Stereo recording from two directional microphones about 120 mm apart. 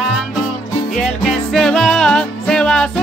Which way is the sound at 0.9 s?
Centre (ahead or behind).